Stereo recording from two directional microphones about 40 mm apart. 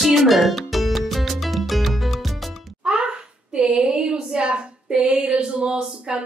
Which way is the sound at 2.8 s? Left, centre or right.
Right.